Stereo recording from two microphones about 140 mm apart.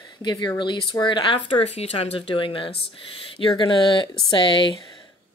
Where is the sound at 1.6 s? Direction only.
45° left (ahead or behind).